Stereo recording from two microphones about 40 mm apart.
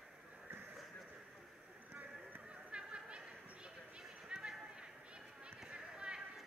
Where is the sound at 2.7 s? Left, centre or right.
Right.